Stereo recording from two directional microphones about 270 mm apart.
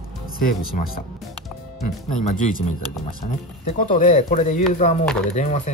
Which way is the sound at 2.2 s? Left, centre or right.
Left.